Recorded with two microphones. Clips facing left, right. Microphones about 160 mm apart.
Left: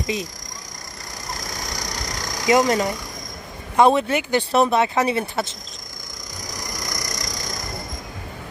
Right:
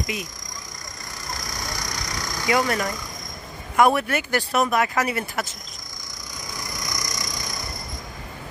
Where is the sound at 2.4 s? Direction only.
20° left (ahead or behind).